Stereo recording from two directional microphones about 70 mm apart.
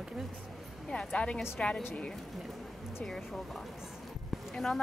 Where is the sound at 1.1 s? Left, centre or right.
Centre.